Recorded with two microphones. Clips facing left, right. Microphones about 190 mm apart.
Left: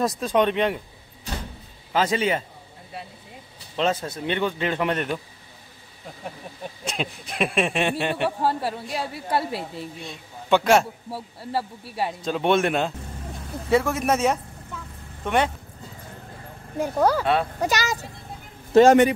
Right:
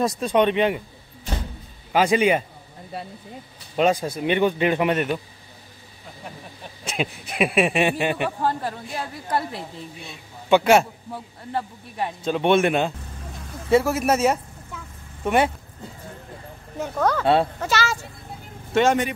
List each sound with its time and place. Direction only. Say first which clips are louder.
0.0 s a woman's voice: right 2 dB; centre (ahead or behind)
1.9 s speech: right 4 dB; 15° right (ahead or behind)
3.7 s speech: right 4 dB; 15° right (ahead or behind)
6.9 s a woman's voice: right 4 dB; 5° right (ahead or behind)
8.4 s a woman's voice: left 1 dB; 5° left (ahead or behind)
16.7 s speech: left 2 dB; 10° left (ahead or behind)
18.7 s a man's voice: left 5 dB; 35° left (ahead or behind)